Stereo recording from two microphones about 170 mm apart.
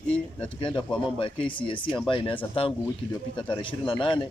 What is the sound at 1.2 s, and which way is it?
Speech, 30° left (ahead or behind).